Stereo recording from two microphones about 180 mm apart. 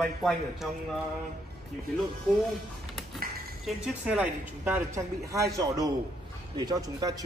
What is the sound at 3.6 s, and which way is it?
A man's voice, 5° right (ahead or behind).